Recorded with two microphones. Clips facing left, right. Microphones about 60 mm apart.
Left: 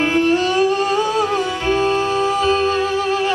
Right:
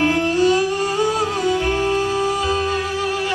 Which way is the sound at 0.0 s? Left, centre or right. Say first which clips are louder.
Left 1 dB; left.